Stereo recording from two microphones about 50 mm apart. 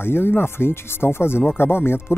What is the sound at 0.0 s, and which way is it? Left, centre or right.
Speech, left.